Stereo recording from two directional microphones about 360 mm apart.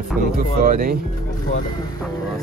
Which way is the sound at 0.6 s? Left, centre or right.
Right.